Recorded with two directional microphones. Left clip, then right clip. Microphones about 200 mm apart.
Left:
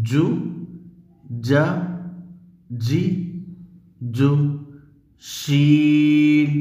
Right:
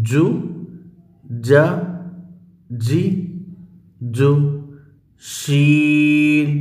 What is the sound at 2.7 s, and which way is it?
Speech, 15° right (ahead or behind).